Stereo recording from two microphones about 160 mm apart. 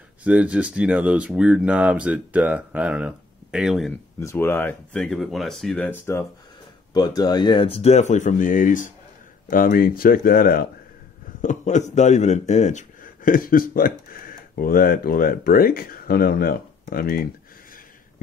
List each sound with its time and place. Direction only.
0.2 s speech: 10° right (ahead or behind)
4.2 s speech: 15° left (ahead or behind)
6.9 s speech: 25° left (ahead or behind); by 10.7 s 65° left (ahead or behind)
11.4 s speech: 50° left (ahead or behind); by 17.3 s 65° left (ahead or behind)